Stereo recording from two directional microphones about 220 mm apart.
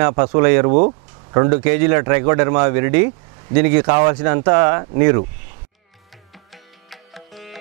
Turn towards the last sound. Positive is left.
turn(degrees=0)  # may be behind; listen again after turning